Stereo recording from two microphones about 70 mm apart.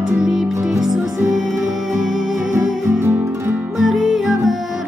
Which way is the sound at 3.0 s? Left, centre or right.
Right.